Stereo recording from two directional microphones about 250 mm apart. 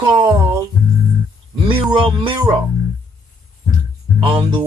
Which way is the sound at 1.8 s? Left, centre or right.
Centre.